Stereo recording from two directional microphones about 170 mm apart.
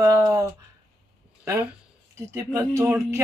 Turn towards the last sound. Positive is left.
turn(degrees=-15)  # may be behind; listen again after turning